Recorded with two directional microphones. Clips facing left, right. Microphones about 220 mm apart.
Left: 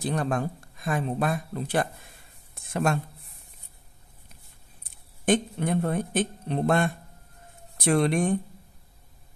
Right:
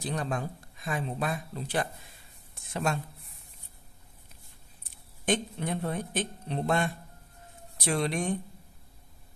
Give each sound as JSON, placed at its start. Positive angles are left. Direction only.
{"t": 0.0, "sound": "speech", "side_deg": 55}
{"t": 5.2, "sound": "speech", "side_deg": 55}